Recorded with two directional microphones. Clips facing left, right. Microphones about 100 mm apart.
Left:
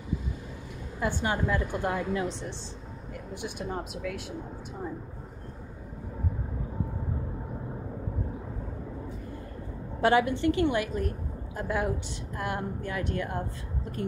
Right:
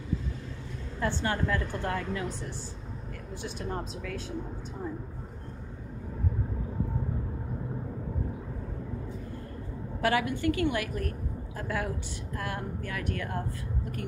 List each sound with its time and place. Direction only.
0.9 s a woman's voice: 15° left (ahead or behind)
3.4 s a woman's voice: 10° left (ahead or behind)
10.0 s a woman's voice: 25° left (ahead or behind)